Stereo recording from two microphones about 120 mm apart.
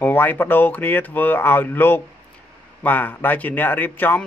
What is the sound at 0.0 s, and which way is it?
Speech, 15° left (ahead or behind).